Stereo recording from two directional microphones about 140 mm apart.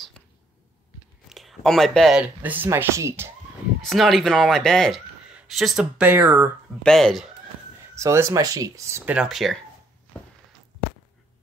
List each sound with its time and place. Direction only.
1.3 s speech: centre (ahead or behind); by 3.3 s 20° right (ahead or behind)
3.8 s speech: centre (ahead or behind)
6.0 s speech: 15° right (ahead or behind)
6.8 s speech: 5° left (ahead or behind)
7.9 s speech: 20° right (ahead or behind)
9.1 s speech: 5° right (ahead or behind)